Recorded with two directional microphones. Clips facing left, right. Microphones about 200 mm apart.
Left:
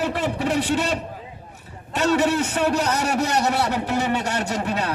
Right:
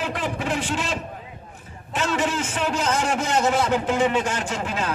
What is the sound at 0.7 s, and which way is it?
Speech, 65° left (ahead or behind).